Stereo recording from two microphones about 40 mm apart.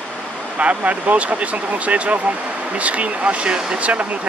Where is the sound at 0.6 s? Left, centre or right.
Right.